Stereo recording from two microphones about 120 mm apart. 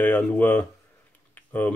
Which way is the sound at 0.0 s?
15° left (ahead or behind).